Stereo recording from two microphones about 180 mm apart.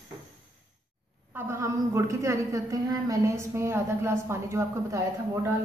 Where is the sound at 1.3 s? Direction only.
15° right (ahead or behind).